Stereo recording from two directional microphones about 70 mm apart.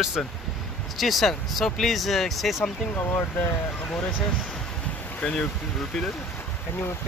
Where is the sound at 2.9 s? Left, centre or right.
Left.